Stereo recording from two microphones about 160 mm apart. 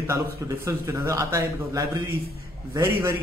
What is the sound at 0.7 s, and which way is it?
A man's voice, 20° right (ahead or behind).